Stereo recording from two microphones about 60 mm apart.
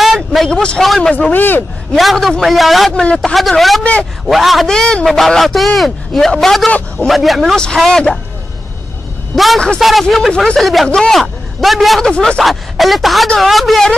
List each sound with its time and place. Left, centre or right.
0.0 s vehicle: centre
0.5 s speech: centre
0.8 s a man's voice: centre
1.1 s a man's voice: left
2.0 s a man's voice: centre
2.9 s speech: centre
3.3 s a man's voice: centre
4.6 s a man's voice: centre
7.5 s speech: centre
9.3 s a man's voice: centre
12.0 s a man's voice: centre